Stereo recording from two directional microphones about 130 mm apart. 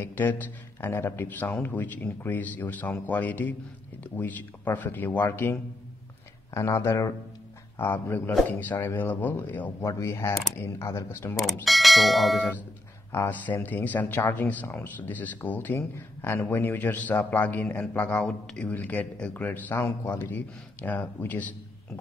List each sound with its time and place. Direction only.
0.0 s speech: 15° left (ahead or behind)
9.8 s speech: 25° left (ahead or behind)
11.6 s speech: centre (ahead or behind)
13.1 s speech: 15° left (ahead or behind)